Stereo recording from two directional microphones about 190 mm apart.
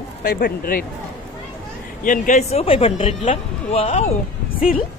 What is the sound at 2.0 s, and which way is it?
Speech, 40° left (ahead or behind).